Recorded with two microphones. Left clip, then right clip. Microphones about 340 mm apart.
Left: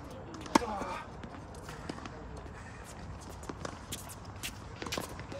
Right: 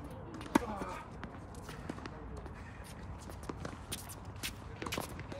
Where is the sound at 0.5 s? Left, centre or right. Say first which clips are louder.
Left 4 dB; left.